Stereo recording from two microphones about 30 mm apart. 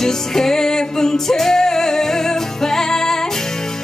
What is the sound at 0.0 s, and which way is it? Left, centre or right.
Music, centre.